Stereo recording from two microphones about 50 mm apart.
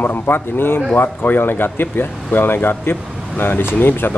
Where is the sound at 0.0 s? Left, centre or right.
Left.